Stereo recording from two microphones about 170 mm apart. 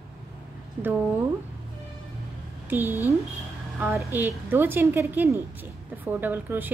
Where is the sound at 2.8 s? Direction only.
15° right (ahead or behind).